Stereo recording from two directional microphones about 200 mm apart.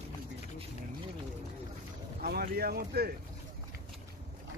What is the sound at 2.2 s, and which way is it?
Speech, 50° right (ahead or behind).